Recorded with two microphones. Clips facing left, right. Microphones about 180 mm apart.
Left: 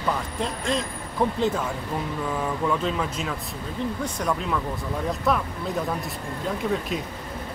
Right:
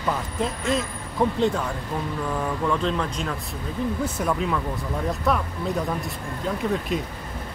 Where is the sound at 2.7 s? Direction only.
5° left (ahead or behind).